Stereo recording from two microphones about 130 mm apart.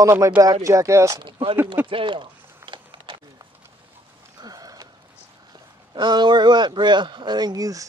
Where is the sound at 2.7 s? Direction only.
40° right (ahead or behind).